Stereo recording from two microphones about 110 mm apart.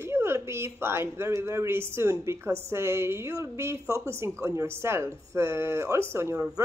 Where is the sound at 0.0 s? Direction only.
25° right (ahead or behind).